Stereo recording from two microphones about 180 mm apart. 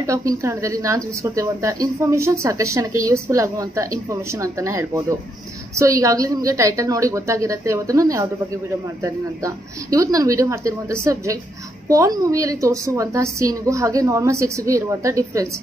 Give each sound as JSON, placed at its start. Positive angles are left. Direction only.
{"t": 0.0, "sound": "a woman's voice", "side_deg": -20}